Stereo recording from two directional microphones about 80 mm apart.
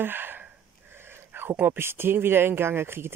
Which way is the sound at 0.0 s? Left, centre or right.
Right.